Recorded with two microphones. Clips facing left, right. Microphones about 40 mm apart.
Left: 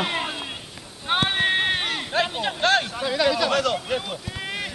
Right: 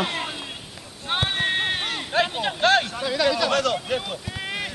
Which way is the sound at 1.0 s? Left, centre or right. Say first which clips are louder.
Left 2 dB; centre.